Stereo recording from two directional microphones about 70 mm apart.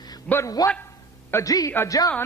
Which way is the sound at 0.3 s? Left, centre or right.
Centre.